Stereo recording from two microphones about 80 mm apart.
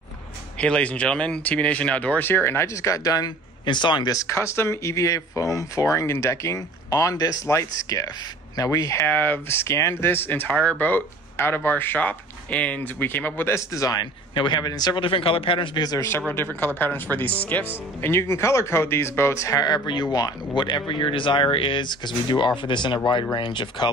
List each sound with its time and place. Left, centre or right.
0.6 s speech: centre; by 3.3 s left
3.6 s a man's voice: left
4.1 s speech: left
9.0 s speech: left
10.5 s speech: centre
13.6 s speech: left
14.3 s a man's voice: left
16.5 s speech: left
18.0 s speech: left
19.6 s speech: left
20.6 s speech: left
22.6 s a man's voice: left